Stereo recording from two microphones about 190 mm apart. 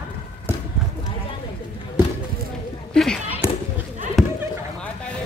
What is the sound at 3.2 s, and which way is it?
Basketball bounce, 10° right (ahead or behind).